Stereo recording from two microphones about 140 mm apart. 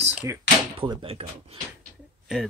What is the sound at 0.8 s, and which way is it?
Speech, 40° right (ahead or behind).